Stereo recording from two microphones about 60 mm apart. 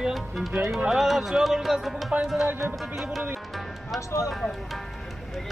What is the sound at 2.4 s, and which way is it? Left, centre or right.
Speech, right.